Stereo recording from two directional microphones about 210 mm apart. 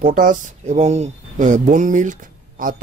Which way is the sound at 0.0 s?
40° right (ahead or behind).